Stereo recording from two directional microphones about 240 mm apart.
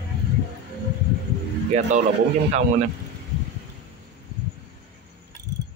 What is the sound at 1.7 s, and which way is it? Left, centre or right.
Speech, right.